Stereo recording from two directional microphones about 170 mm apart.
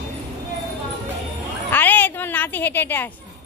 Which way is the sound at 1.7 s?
10° left (ahead or behind).